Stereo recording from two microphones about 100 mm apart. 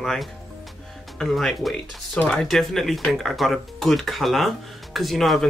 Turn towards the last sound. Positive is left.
turn(degrees=0)  # may be behind; listen again after turning